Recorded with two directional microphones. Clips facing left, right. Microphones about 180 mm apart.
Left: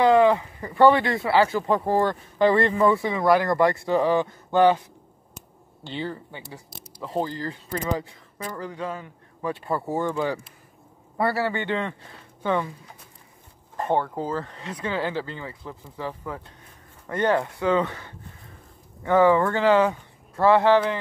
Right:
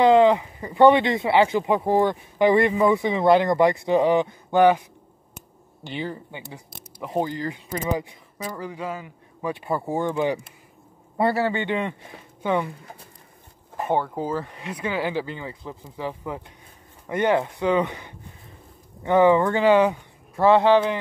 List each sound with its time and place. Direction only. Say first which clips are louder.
0.0 s speech: right 2 dB; 20° right (ahead or behind)
5.9 s speech: right 1 dB; 15° right (ahead or behind)
13.7 s speech: even; 10° right (ahead or behind)